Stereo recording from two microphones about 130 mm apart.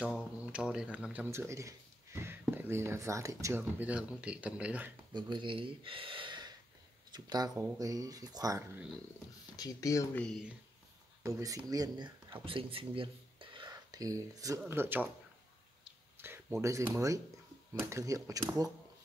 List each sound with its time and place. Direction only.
0.0 s speech: 5° right (ahead or behind); by 3.6 s 25° right (ahead or behind)
3.8 s speech: 10° right (ahead or behind)
5.1 s speech: 35° right (ahead or behind)
9.6 s speech: 25° left (ahead or behind)
10.1 s speech: 5° left (ahead or behind)
11.2 s speech: 25° right (ahead or behind)
14.7 s speech: 15° right (ahead or behind)
16.2 s a sound: 15° right (ahead or behind)
16.6 s speech: 25° right (ahead or behind)